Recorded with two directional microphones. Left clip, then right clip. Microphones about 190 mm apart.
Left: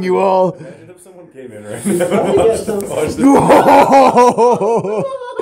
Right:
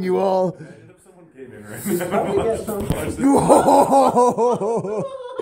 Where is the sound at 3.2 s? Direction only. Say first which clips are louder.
Left 6 dB; centre (ahead or behind).